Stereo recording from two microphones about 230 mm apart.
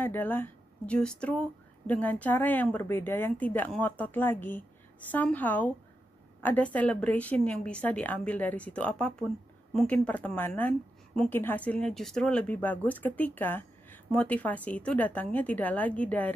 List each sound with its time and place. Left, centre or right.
0.0 s a woman's voice: centre